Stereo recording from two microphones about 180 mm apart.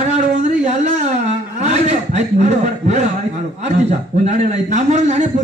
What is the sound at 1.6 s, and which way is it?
Chuckle, 40° right (ahead or behind).